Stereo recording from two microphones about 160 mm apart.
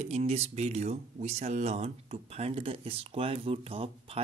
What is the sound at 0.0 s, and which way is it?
Speech, 40° right (ahead or behind).